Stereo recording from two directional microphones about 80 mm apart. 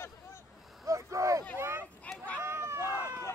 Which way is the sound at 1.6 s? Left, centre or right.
Right.